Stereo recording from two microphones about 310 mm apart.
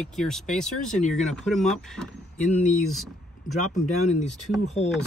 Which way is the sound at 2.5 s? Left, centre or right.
Left.